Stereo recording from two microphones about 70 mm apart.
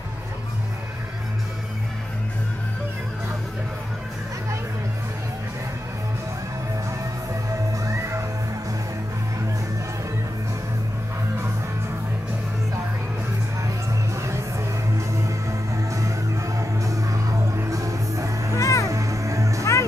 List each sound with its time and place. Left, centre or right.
7.8 s music: right
14.1 s music: right
18.6 s music: left
18.9 s music: right
19.6 s music: left